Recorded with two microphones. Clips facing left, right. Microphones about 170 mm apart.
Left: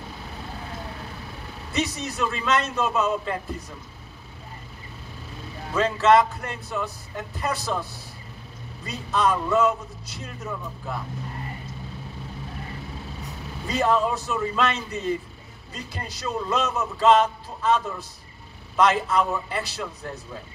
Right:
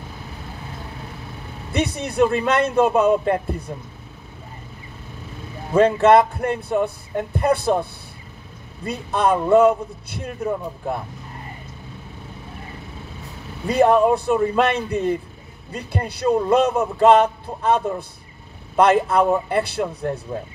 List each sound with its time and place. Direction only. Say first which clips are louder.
1.7 s speech: right 4 dB; 60° right (ahead or behind)
5.8 s speech: right 5 dB; 55° right (ahead or behind)
10.4 s speech: right 9 dB; 45° right (ahead or behind)
13.7 s speech: right 8 dB; 60° right (ahead or behind)